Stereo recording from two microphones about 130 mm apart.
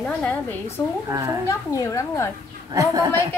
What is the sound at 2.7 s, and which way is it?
Speech, 25° right (ahead or behind).